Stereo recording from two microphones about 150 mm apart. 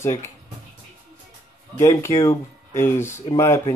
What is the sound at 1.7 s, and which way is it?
Speech, 20° left (ahead or behind).